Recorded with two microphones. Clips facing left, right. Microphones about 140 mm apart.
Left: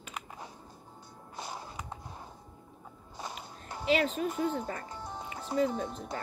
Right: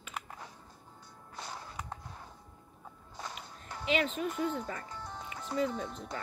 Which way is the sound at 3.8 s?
40° left (ahead or behind).